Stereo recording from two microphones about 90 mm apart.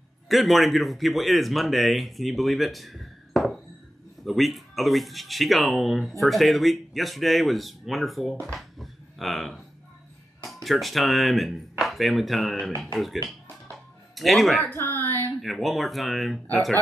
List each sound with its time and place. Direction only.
0.3 s speech: centre (ahead or behind)
14.7 s a sound: 20° left (ahead or behind)
15.4 s speech: centre (ahead or behind)